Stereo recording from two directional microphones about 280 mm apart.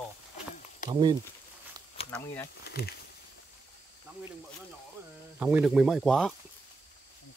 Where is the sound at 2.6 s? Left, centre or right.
Left.